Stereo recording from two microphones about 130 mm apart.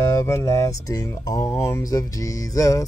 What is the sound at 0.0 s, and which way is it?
Music, 25° left (ahead or behind).